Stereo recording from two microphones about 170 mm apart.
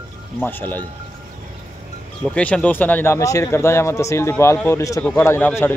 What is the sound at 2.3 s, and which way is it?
A man's voice, 5° left (ahead or behind).